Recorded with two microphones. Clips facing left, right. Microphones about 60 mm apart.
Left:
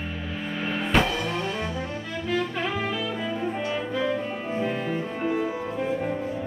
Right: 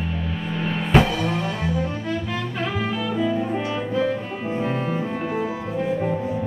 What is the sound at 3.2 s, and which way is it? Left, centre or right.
Music, centre.